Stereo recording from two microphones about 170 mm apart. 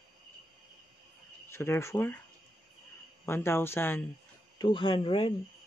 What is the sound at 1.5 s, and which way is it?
Speech, 15° left (ahead or behind).